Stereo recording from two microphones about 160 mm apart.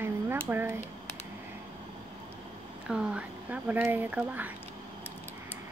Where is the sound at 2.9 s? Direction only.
5° right (ahead or behind).